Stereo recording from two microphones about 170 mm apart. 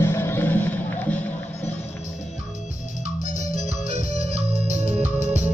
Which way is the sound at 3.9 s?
40° right (ahead or behind).